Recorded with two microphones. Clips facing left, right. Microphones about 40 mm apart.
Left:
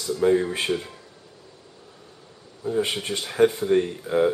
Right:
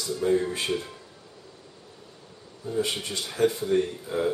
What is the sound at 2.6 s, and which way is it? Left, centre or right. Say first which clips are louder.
Speech: left 4 dB; left.